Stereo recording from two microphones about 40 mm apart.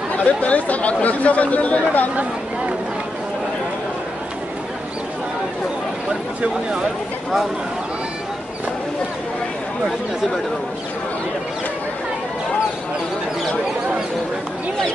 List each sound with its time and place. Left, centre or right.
0.2 s speech: left